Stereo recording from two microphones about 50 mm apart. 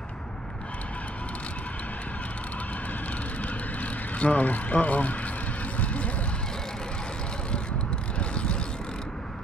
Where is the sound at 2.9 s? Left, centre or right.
Left.